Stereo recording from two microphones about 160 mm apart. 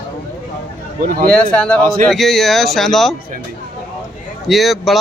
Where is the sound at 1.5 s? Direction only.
5° left (ahead or behind).